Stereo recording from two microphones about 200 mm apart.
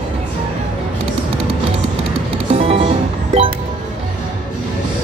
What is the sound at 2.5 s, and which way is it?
Music, 30° right (ahead or behind).